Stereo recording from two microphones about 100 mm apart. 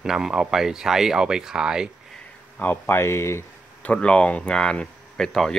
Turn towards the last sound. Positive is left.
turn(degrees=5)  # may be behind; listen again after turning